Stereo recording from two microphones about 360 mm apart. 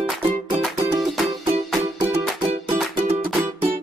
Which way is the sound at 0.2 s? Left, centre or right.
Centre.